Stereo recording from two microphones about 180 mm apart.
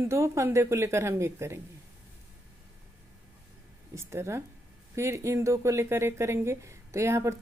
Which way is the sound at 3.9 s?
15° right (ahead or behind).